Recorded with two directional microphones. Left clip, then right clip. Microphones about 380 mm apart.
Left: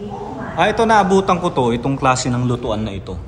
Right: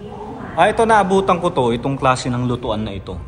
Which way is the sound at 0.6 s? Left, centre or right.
Centre.